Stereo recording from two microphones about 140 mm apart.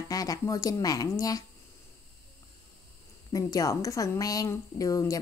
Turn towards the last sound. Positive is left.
turn(degrees=25)  # may be behind; listen again after turning